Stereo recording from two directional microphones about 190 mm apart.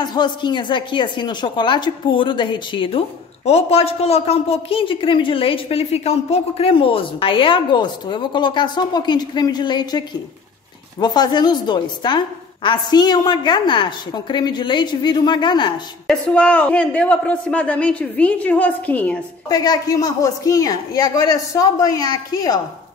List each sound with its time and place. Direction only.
0.1 s a woman's voice: 25° left (ahead or behind)
16.1 s speech: 5° left (ahead or behind)
19.5 s a woman's voice: 20° left (ahead or behind)